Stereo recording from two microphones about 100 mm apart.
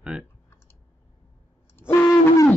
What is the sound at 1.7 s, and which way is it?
Owl, 20° left (ahead or behind).